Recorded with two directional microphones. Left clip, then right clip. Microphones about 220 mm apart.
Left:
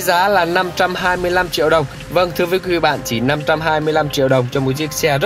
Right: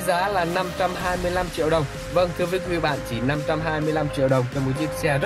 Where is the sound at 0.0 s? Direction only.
10° left (ahead or behind).